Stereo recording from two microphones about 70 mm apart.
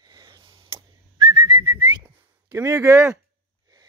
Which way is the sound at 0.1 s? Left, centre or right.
Right.